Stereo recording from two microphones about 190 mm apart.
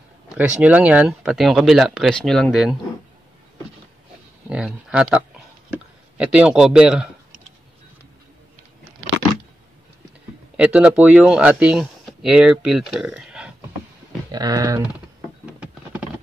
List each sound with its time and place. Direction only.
0.6 s speech: 5° right (ahead or behind)
4.5 s speech: 5° right (ahead or behind)
10.6 s speech: 5° right (ahead or behind)
14.3 s speech: 20° right (ahead or behind)
15.4 s a sound: 5° right (ahead or behind)